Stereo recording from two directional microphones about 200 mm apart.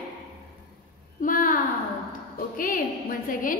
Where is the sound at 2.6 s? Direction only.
45° left (ahead or behind).